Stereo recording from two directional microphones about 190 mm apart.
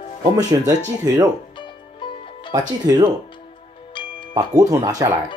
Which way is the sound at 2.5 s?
20° right (ahead or behind).